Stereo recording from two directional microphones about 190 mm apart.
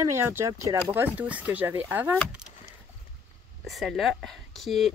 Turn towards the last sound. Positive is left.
turn(degrees=0)  # may be behind; listen again after turning